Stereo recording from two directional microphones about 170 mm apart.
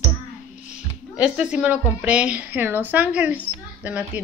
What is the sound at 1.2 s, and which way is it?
A woman's voice, 5° right (ahead or behind).